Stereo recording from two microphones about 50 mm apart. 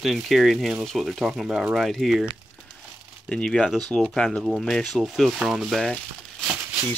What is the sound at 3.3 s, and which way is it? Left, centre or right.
Speech, centre.